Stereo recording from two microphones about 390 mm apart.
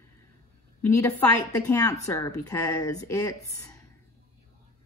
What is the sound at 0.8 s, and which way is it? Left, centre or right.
Speech, centre.